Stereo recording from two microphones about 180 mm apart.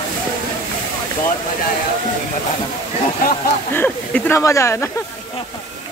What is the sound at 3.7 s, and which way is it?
Speech, 10° left (ahead or behind).